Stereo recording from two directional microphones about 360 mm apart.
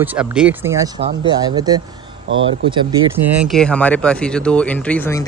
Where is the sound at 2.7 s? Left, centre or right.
Centre.